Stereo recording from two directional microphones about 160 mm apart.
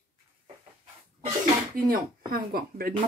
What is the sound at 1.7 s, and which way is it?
Speech, 65° right (ahead or behind).